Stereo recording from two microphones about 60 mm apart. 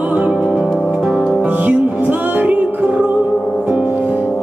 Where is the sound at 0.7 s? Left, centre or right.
Centre.